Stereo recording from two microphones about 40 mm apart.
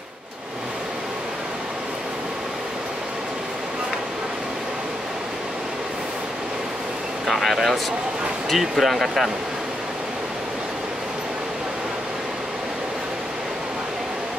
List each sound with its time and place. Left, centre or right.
7.2 s speech: centre